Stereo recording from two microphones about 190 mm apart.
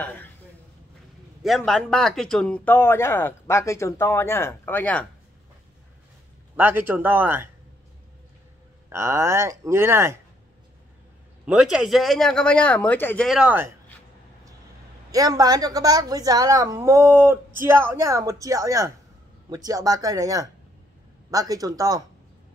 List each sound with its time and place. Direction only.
0.0 s speech: 10° left (ahead or behind)
1.6 s speech: centre (ahead or behind)
6.5 s a woman's voice: 10° right (ahead or behind)
8.8 s a woman's voice: 15° right (ahead or behind)
11.4 s speech: 5° right (ahead or behind)
13.4 s a woman's voice: 10° right (ahead or behind)
15.0 s a woman's voice: 20° right (ahead or behind)